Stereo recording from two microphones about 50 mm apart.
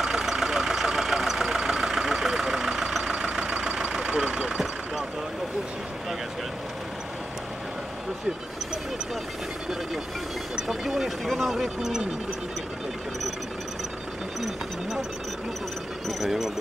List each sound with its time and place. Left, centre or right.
0.0 s vehicle: centre
10.5 s speech: centre
16.1 s speech: centre